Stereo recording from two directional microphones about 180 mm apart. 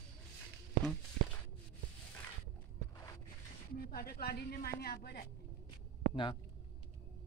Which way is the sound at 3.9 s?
55° left (ahead or behind).